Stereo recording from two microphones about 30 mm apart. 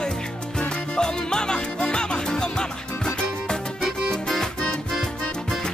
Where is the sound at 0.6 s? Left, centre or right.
Left.